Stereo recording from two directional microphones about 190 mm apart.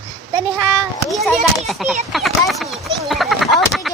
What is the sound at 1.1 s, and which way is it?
Speech, centre (ahead or behind).